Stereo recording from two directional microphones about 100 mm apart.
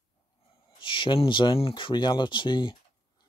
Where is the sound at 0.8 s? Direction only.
55° left (ahead or behind).